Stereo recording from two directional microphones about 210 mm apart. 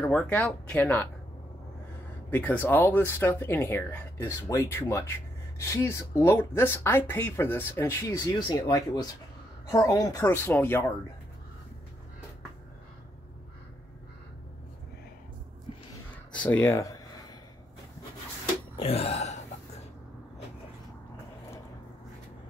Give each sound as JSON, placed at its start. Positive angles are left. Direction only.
{"t": 0.0, "sound": "speech", "side_deg": 5}
{"t": 2.3, "sound": "speech", "side_deg": 10}
{"t": 16.3, "sound": "speech", "side_deg": 5}
{"t": 18.8, "sound": "burping", "side_deg": 30}